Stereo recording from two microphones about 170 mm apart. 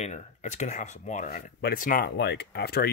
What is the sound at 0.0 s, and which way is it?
Speech, 45° left (ahead or behind).